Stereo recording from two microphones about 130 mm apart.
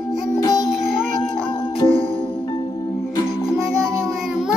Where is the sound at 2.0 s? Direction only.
45° left (ahead or behind).